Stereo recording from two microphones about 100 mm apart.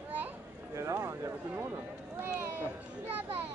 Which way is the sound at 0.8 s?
25° right (ahead or behind).